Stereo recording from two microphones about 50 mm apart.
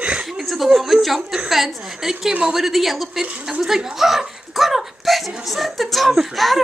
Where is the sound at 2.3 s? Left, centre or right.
Centre.